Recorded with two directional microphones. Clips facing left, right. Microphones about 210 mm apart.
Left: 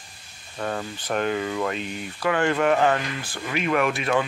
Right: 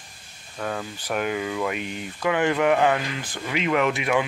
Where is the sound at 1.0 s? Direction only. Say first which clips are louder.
Left 1 dB; 10° right (ahead or behind).